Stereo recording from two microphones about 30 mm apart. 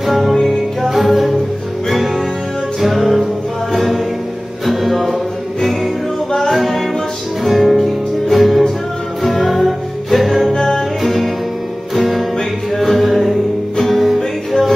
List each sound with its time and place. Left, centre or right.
0.0 s music: centre
2.8 s music: centre
6.5 s music: centre
10.5 s music: centre
11.0 s music: centre